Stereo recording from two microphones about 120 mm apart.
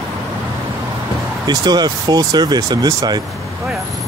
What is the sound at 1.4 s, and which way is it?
Speech, 35° right (ahead or behind).